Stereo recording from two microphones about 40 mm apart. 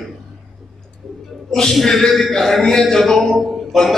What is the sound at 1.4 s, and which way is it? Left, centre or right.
A man's voice, centre.